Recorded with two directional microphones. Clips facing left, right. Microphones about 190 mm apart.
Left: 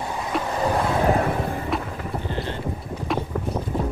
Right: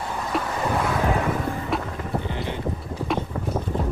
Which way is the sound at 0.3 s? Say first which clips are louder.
Even; centre (ahead or behind).